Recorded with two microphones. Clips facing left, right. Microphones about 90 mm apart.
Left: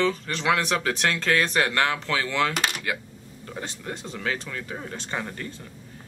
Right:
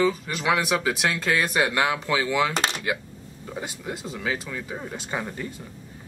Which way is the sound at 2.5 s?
30° right (ahead or behind).